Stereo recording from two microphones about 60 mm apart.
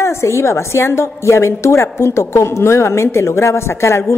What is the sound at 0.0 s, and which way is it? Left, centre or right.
A woman's voice, left.